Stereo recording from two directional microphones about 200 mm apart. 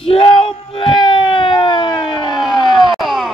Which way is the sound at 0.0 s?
25° left (ahead or behind).